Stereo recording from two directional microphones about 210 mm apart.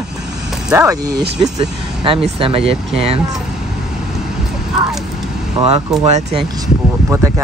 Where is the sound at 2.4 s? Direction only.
25° right (ahead or behind).